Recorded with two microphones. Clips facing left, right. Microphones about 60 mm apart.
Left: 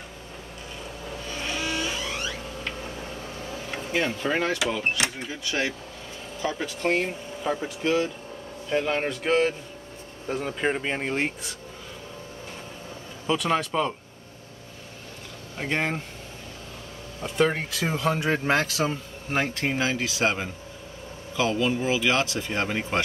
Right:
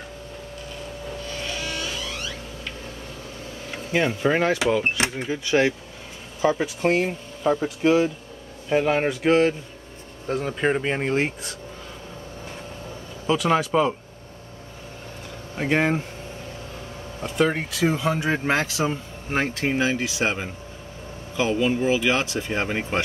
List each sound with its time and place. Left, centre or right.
1.2 s vehicle: centre
3.9 s speech: centre
4.6 s speech: right
6.4 s speech: centre
13.3 s speech: centre
15.5 s speech: centre
17.2 s speech: centre